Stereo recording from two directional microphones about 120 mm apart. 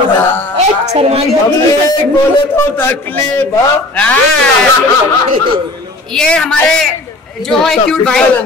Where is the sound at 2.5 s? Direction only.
20° left (ahead or behind).